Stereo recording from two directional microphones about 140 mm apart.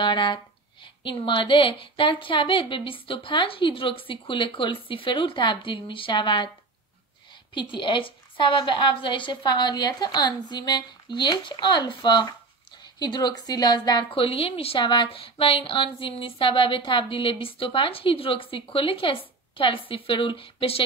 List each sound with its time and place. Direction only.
0.0 s a woman's voice: 35° left (ahead or behind)
7.7 s a woman's voice: 35° left (ahead or behind)